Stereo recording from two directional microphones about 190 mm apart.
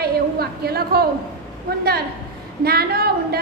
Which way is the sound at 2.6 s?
55° right (ahead or behind).